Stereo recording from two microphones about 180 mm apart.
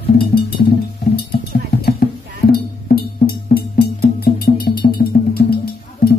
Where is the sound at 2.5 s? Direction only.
60° left (ahead or behind).